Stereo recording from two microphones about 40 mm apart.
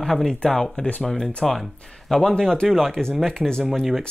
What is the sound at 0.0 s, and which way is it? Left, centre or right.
Speech, centre.